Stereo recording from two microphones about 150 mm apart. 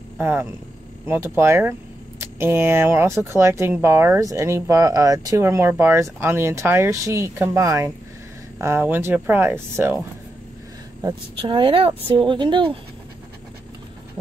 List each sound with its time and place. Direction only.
0.2 s speech: 15° right (ahead or behind)
11.0 s speech: 30° right (ahead or behind)